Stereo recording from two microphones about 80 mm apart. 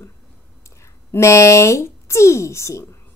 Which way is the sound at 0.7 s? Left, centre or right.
Left.